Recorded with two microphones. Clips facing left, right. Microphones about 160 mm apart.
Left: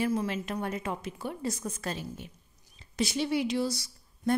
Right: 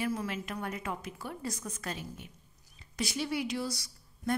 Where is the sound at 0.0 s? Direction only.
25° left (ahead or behind).